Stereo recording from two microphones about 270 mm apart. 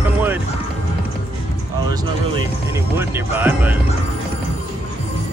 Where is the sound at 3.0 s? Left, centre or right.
Centre.